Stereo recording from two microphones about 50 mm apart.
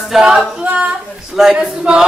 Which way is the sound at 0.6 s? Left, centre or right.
Right.